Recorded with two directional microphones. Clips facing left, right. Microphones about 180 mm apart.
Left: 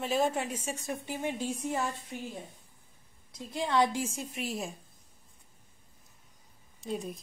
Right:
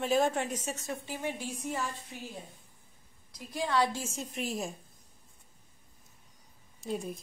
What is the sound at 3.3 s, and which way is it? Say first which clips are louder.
A woman's voice: left 2 dB; 25° left (ahead or behind).